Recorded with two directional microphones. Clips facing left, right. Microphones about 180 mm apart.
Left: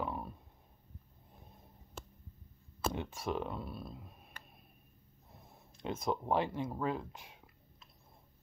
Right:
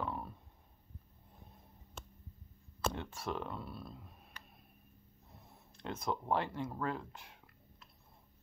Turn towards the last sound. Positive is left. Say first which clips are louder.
# left 1 dB
turn(degrees=15)  # may be behind; listen again after turning